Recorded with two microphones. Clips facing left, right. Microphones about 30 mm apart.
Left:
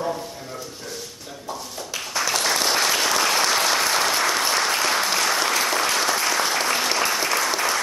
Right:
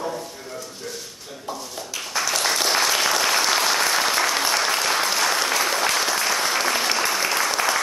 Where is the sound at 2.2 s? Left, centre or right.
Centre.